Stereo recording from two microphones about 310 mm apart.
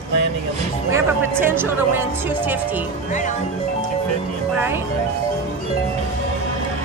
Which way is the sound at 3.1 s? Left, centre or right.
Left.